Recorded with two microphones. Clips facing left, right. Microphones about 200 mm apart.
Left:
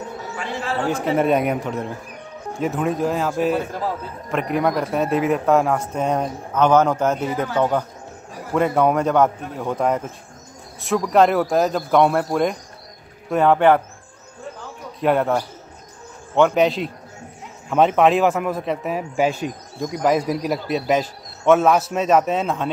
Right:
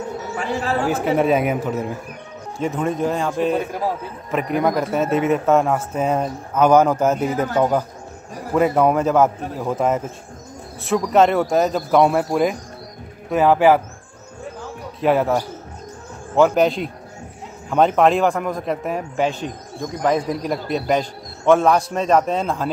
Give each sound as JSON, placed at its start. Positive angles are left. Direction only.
{"t": 0.8, "sound": "a man's voice", "side_deg": -5}
{"t": 15.0, "sound": "a man's voice", "side_deg": 0}